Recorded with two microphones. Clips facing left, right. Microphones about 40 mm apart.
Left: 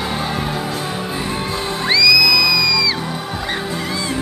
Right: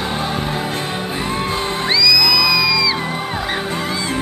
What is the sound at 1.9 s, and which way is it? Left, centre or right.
Music, centre.